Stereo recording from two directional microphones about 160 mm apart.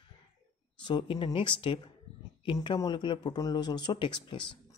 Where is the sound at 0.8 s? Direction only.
30° left (ahead or behind).